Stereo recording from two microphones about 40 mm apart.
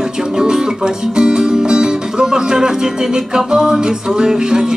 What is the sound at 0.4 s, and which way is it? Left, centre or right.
Music, centre.